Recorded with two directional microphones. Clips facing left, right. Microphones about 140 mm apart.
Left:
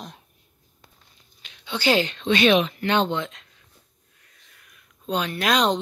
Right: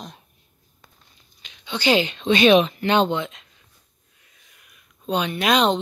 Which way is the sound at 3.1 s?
10° right (ahead or behind).